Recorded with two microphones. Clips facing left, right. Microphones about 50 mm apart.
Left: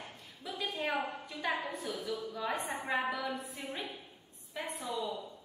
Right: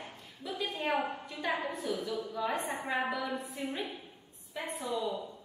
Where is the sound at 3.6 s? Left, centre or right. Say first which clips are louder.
Right 5 dB; right.